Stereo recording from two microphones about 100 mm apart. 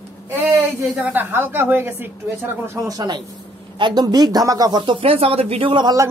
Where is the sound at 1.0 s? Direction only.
20° right (ahead or behind).